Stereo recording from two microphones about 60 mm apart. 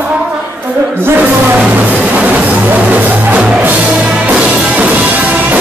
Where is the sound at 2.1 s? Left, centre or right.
Right.